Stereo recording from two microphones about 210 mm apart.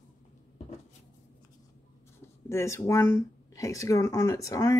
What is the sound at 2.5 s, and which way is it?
Speech, 15° left (ahead or behind).